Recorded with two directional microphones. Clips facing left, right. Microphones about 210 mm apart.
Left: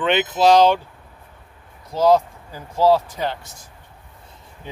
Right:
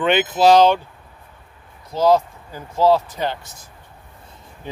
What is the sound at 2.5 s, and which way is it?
Speech, 10° left (ahead or behind).